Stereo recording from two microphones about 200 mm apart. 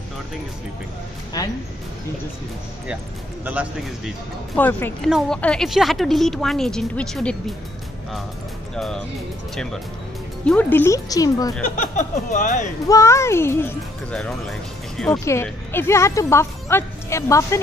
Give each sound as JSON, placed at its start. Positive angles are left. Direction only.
{"t": 1.4, "sound": "speech", "side_deg": 20}
{"t": 3.4, "sound": "a man's voice", "side_deg": -5}
{"t": 4.6, "sound": "speech", "side_deg": 10}
{"t": 8.7, "sound": "speech", "side_deg": 5}
{"t": 10.4, "sound": "speech", "side_deg": 5}
{"t": 11.7, "sound": "speech", "side_deg": 40}
{"t": 12.8, "sound": "speech", "side_deg": 15}